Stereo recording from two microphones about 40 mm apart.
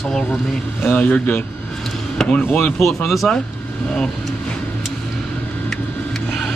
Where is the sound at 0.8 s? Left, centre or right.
Left.